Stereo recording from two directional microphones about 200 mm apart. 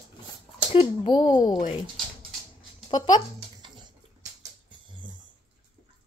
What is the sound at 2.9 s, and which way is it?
Speech, 20° left (ahead or behind).